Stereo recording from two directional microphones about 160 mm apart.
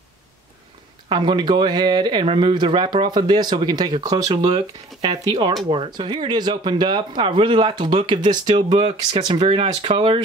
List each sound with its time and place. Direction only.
1.0 s speech: 30° right (ahead or behind)